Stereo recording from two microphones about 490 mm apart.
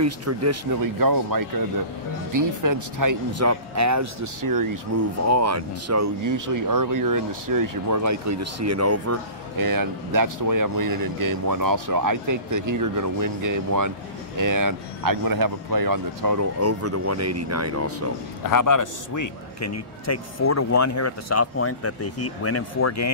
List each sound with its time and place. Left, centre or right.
0.0 s speech: right
18.4 s a man's voice: left